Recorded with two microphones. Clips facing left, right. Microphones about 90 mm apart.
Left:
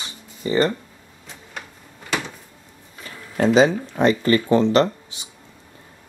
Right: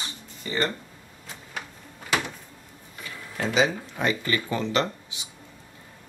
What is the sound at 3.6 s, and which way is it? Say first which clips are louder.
Speech: left 6 dB; 35° left (ahead or behind).